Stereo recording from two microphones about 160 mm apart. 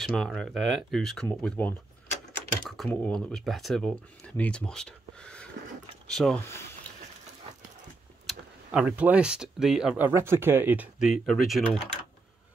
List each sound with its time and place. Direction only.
0.0 s speech: 5° left (ahead or behind)
6.4 s speech: 15° left (ahead or behind)
8.3 s speech: 5° right (ahead or behind)